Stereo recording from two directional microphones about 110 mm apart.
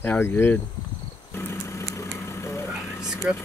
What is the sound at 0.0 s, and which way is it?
Speech, 20° left (ahead or behind).